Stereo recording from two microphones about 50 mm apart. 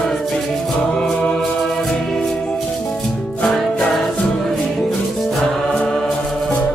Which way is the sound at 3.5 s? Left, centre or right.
Centre.